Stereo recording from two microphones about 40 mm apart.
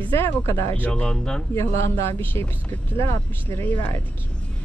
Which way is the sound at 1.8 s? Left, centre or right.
Left.